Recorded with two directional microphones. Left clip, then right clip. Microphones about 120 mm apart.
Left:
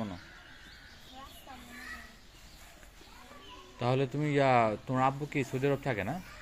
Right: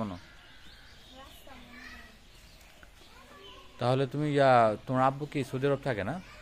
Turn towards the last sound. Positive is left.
turn(degrees=-40)  # may be behind; listen again after turning